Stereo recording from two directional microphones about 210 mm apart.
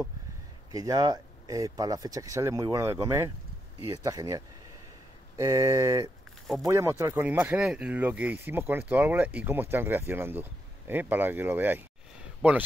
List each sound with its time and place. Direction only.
0.7 s speech: 15° right (ahead or behind)
5.4 s speech: 15° right (ahead or behind)
6.4 s speech: centre (ahead or behind)
6.7 s speech: 15° right (ahead or behind)